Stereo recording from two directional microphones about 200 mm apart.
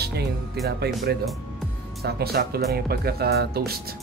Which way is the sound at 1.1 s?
50° right (ahead or behind).